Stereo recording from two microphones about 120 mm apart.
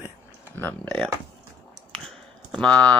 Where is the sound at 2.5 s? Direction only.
10° left (ahead or behind).